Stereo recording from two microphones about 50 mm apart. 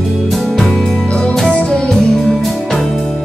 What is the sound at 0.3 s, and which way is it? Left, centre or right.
Music, centre.